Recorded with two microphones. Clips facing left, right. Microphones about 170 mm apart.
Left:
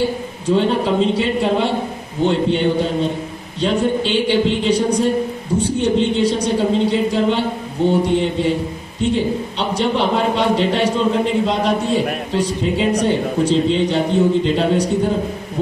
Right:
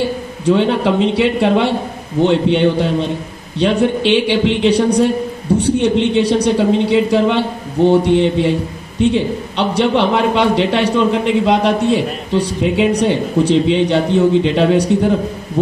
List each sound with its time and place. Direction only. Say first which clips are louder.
0.5 s a man's voice: right 3 dB; 65° right (ahead or behind)